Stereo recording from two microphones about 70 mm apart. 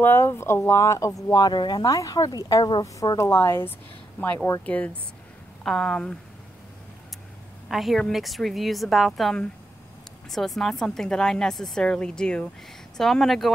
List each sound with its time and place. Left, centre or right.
0.0 s speech: left
1.4 s speech: left
2.0 s speech: left
3.2 s speech: left
4.6 s speech: left
5.6 s a woman's voice: centre
7.6 s a woman's voice: centre